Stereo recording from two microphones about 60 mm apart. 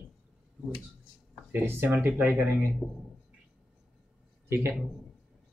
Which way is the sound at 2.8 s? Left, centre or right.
Centre.